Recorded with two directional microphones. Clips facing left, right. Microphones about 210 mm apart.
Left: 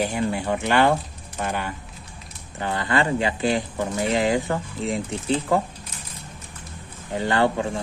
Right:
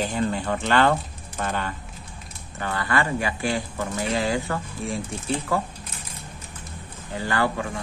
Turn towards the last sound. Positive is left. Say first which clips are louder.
# left 4 dB
turn(degrees=25)  # may be behind; listen again after turning